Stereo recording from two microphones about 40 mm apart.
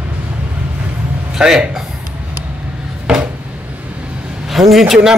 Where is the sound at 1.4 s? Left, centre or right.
Centre.